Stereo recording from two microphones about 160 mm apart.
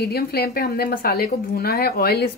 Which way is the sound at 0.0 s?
85° left.